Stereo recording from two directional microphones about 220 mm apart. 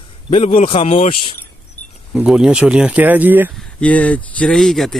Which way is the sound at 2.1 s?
5° right (ahead or behind).